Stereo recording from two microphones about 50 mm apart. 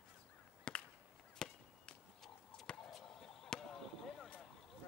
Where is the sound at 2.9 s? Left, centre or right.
Centre.